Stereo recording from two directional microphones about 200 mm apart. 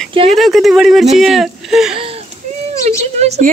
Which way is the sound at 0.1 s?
25° right (ahead or behind).